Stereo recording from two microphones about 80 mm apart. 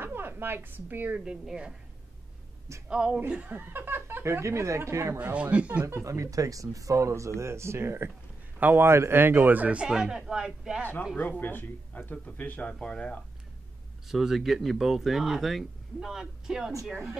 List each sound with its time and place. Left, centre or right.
0.0 s speech: right; by 1.8 s centre
2.9 s speech: centre; by 5.2 s right
5.2 s speech: centre
6.0 s speech: right; by 10.9 s centre
11.1 s speech: left
14.0 s speech: centre